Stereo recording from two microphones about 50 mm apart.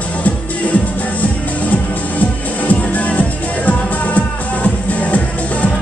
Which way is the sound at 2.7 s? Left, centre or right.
Left.